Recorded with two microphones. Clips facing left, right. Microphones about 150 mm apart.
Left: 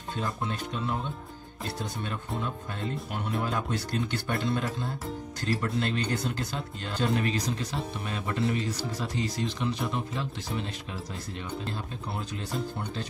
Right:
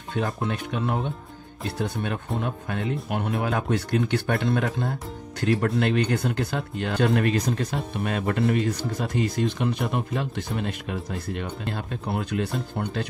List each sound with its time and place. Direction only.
0.1 s speech: 65° right (ahead or behind)